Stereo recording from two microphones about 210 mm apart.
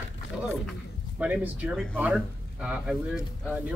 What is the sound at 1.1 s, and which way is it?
Speech, 10° right (ahead or behind).